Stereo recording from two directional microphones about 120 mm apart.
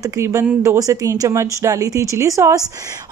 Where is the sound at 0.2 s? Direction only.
25° right (ahead or behind).